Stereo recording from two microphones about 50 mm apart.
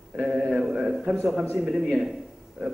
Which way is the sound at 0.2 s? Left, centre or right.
Right.